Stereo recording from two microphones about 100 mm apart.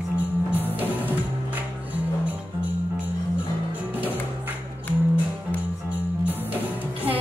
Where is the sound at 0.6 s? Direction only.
20° right (ahead or behind).